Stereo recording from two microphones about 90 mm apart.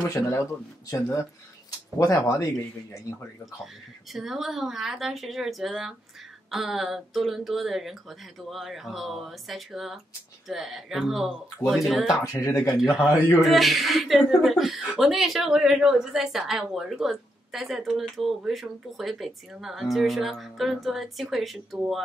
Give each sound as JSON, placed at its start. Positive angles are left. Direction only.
{"t": 0.1, "sound": "speech", "side_deg": 40}
{"t": 4.1, "sound": "speech", "side_deg": 0}
{"t": 12.2, "sound": "speech", "side_deg": 40}
{"t": 13.4, "sound": "speech", "side_deg": 0}